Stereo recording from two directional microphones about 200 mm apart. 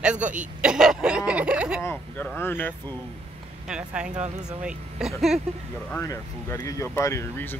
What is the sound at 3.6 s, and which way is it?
Speech, 5° right (ahead or behind).